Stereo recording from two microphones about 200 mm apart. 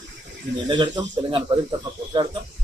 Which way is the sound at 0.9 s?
25° right (ahead or behind).